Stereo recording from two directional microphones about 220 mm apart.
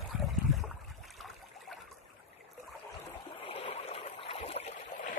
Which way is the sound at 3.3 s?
25° left (ahead or behind).